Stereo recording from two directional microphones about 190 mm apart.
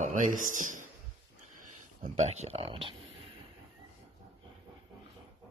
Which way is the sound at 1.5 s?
45° right (ahead or behind).